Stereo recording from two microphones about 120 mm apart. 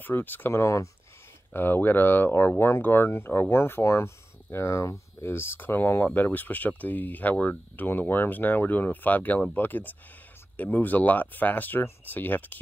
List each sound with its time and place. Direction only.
0.0 s speech: 15° left (ahead or behind)